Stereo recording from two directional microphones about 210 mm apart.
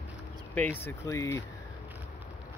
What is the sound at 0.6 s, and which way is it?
Speech, 10° left (ahead or behind).